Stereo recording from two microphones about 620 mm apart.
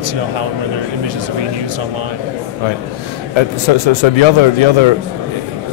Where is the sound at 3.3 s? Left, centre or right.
Left.